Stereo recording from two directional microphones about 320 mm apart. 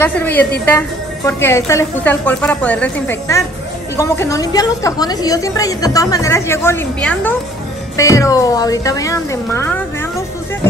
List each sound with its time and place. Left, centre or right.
0.0 s a woman's voice: centre